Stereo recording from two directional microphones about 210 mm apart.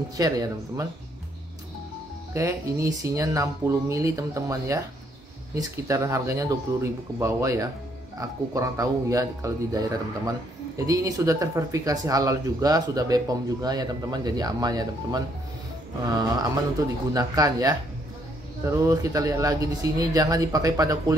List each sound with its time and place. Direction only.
0.2 s speech: 15° right (ahead or behind)
2.3 s speech: 15° right (ahead or behind)